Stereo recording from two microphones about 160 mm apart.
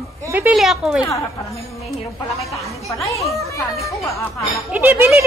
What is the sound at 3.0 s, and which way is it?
Speech, 20° left (ahead or behind).